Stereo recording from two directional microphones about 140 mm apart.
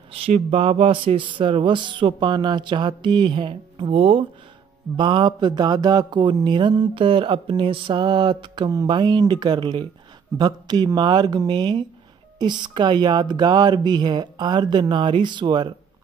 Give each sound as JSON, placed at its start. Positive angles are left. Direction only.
{"t": 0.1, "sound": "mantra", "side_deg": -45}